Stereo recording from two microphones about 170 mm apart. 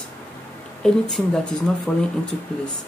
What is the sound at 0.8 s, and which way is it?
Speech, 5° left (ahead or behind).